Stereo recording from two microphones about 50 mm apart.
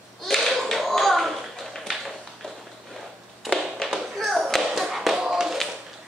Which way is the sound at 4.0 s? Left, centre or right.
Centre.